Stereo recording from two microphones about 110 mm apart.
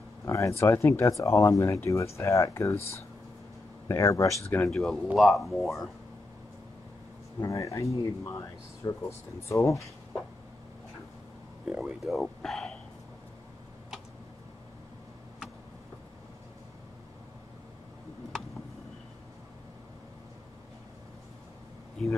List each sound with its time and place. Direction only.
0.2 s speech: 25° left (ahead or behind)
3.9 s speech: 25° left (ahead or behind)
4.6 s speech: centre (ahead or behind)
7.4 s speech: 30° left (ahead or behind)
11.8 s speech: centre (ahead or behind)
12.4 s a sound: 5° left (ahead or behind)